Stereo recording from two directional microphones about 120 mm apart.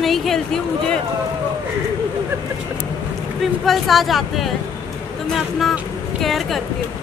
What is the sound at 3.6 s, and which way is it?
A woman's voice, centre (ahead or behind).